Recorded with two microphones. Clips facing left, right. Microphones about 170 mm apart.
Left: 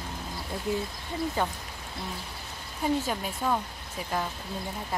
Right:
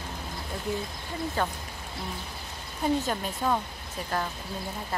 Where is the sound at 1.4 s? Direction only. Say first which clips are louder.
Right 1 dB; 15° left (ahead or behind).